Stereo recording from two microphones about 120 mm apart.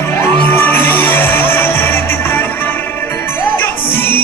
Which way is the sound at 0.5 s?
15° left (ahead or behind).